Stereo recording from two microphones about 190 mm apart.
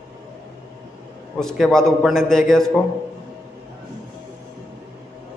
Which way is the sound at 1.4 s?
5° left (ahead or behind).